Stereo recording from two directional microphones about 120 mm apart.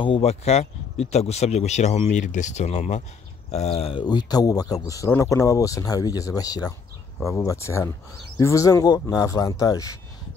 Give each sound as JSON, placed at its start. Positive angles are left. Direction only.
{"t": 0.0, "sound": "speech", "side_deg": 55}
{"t": 4.0, "sound": "speech", "side_deg": 35}